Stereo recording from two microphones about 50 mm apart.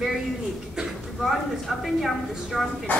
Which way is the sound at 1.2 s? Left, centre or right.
Centre.